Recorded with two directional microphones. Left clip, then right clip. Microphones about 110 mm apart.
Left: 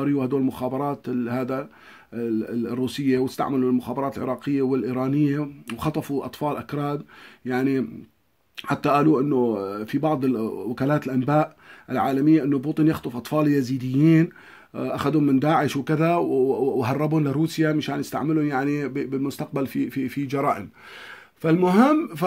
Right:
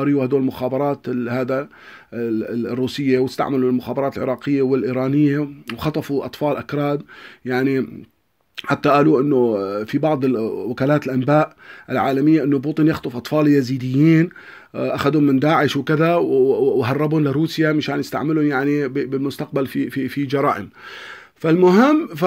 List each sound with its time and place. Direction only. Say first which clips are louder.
0.0 s speech: right 5 dB; 30° right (ahead or behind)